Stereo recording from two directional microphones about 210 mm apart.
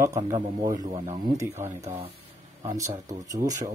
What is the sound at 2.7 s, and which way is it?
Speech, 15° right (ahead or behind).